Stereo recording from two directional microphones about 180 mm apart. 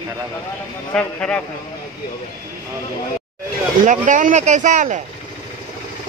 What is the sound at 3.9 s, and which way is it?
Speech, 45° right (ahead or behind).